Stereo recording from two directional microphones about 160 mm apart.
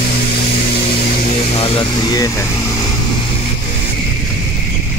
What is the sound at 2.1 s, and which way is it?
Speech, 20° left (ahead or behind).